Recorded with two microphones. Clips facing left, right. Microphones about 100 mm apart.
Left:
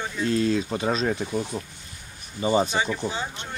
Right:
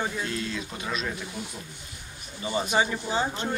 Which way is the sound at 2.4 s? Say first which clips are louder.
Left 8 dB; 30° left (ahead or behind).